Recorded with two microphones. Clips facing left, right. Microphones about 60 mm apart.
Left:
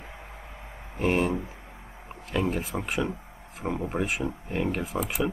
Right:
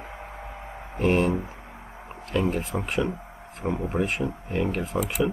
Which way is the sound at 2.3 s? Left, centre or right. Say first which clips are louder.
Right 2 dB; centre.